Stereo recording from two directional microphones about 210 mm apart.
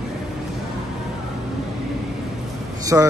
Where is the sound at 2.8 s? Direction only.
15° right (ahead or behind).